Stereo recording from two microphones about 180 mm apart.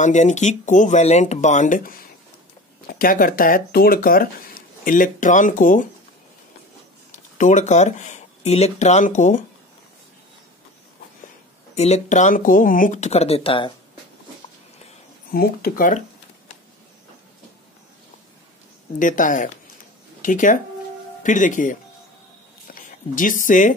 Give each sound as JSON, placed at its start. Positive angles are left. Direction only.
{"t": 0.0, "sound": "speech", "side_deg": 40}
{"t": 7.1, "sound": "speech", "side_deg": 45}
{"t": 11.7, "sound": "speech", "side_deg": 40}
{"t": 15.3, "sound": "speech", "side_deg": 55}
{"t": 18.9, "sound": "speech", "side_deg": 45}